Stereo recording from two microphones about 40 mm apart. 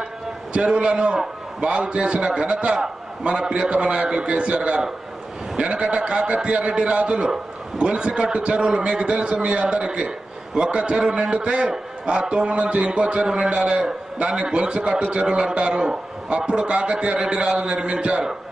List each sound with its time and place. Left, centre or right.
0.5 s a man's voice: right
9.1 s a man's voice: right